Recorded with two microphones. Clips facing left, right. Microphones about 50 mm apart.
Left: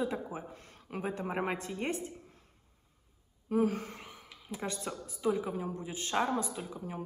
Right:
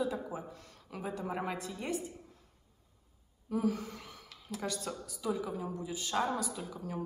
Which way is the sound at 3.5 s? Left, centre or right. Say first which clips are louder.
Left 3 dB; left.